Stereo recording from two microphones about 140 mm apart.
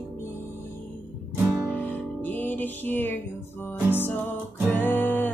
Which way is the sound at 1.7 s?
10° left (ahead or behind).